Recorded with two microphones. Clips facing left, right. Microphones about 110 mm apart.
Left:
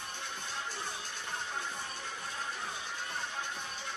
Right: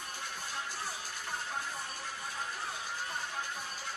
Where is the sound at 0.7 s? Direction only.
5° right (ahead or behind).